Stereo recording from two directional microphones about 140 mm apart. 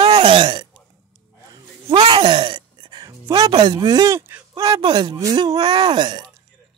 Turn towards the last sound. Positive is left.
turn(degrees=-30)  # may be behind; listen again after turning